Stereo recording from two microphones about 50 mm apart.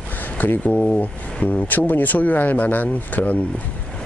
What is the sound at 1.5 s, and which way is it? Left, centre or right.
Speech, left.